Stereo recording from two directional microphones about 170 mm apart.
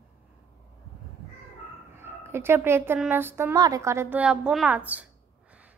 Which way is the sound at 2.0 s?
15° right (ahead or behind).